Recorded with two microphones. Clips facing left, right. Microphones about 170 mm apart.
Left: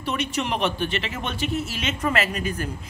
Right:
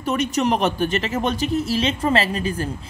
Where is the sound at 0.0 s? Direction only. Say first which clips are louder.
Right 6 dB; 40° right (ahead or behind).